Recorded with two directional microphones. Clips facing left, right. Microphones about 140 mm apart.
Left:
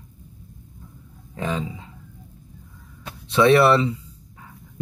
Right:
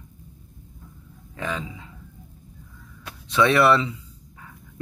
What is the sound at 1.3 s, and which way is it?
Speech, 30° left (ahead or behind).